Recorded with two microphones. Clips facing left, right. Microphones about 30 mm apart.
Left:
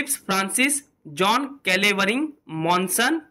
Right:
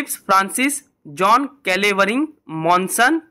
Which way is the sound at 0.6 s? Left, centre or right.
Centre.